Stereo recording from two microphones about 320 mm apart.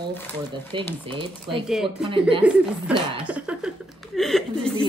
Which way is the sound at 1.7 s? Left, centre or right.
Centre.